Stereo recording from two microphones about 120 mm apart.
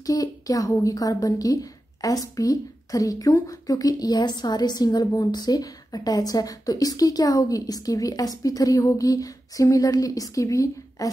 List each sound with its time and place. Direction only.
0.0 s a woman's voice: 30° left (ahead or behind)